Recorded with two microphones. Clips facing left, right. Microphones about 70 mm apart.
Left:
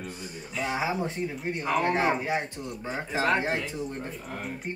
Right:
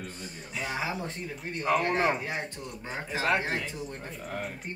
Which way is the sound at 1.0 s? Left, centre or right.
Centre.